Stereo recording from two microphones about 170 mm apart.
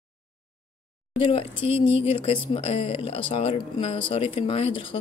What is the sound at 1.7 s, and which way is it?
Speech, 35° left (ahead or behind).